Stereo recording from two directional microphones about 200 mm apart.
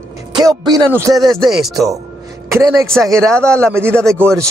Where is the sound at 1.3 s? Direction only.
Centre (ahead or behind).